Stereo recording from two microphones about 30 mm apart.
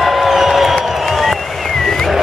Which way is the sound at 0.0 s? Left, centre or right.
Centre.